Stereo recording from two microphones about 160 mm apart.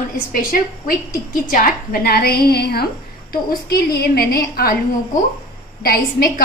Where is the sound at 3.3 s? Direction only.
75° left (ahead or behind).